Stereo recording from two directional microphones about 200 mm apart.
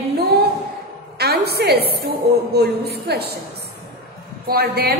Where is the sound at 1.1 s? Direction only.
55° right (ahead or behind).